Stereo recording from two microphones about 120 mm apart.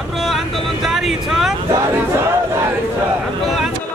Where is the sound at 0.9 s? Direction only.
5° right (ahead or behind).